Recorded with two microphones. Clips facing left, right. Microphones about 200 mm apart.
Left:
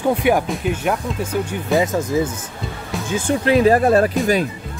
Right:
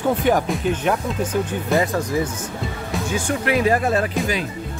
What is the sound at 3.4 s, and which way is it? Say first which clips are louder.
Speech: left 6 dB; 30° left (ahead or behind).